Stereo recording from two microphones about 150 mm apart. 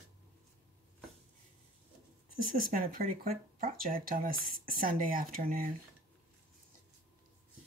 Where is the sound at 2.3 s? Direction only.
70° right (ahead or behind).